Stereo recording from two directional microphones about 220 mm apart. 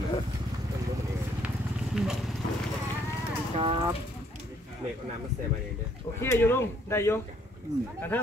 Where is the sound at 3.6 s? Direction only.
25° right (ahead or behind).